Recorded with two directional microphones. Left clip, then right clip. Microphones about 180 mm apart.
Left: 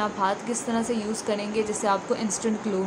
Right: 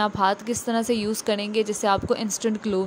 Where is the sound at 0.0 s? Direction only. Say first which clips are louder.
Right 3 dB; 45° right (ahead or behind).